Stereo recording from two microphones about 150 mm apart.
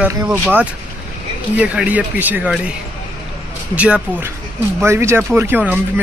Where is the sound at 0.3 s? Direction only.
10° right (ahead or behind).